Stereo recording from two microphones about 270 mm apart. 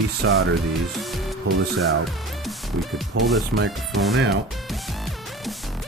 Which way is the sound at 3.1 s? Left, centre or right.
Right.